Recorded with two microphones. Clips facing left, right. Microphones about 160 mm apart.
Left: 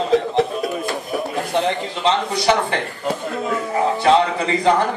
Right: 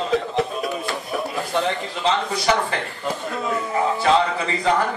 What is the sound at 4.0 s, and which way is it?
Speech, 35° left (ahead or behind).